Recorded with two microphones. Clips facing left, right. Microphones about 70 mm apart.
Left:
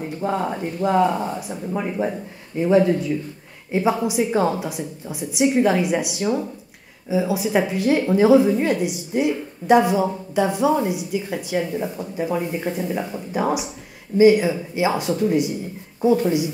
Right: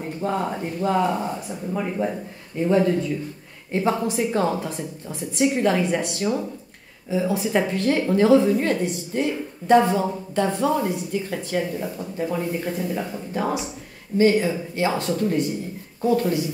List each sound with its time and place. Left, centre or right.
0.2 s a woman's voice: centre
1.2 s a woman's voice: centre